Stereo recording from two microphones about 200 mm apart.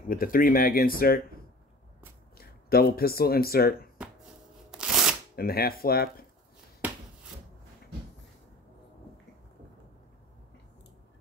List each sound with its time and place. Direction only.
0.1 s speech: 45° left (ahead or behind)
2.3 s speech: 50° left (ahead or behind)
4.6 s shuffling cards: 5° right (ahead or behind)
5.3 s speech: 50° left (ahead or behind)